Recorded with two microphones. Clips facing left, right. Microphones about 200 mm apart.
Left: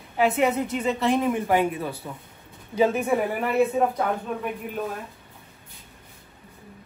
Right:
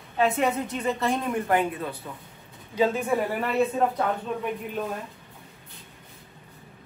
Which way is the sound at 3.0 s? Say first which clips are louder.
Left 2 dB; 5° left (ahead or behind).